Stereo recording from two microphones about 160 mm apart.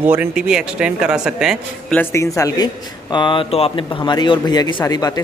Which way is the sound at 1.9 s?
20° left (ahead or behind).